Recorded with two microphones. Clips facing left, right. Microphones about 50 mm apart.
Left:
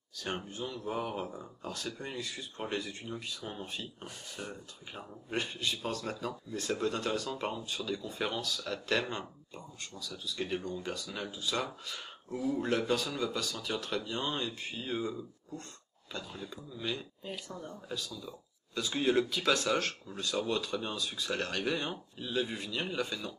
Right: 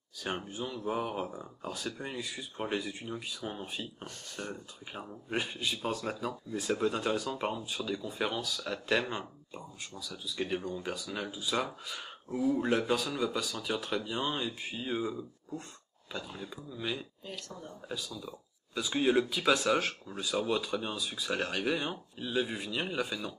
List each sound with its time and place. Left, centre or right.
0.2 s speech: centre
4.9 s speech: centre
17.3 s speech: centre
17.8 s speech: centre